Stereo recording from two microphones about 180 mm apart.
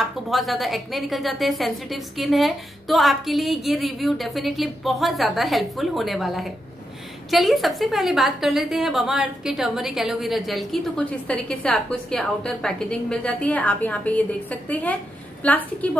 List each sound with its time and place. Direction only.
0.0 s a woman's voice: centre (ahead or behind)